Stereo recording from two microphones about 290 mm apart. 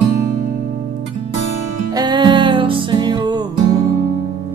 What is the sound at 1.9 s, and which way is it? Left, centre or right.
Music, centre.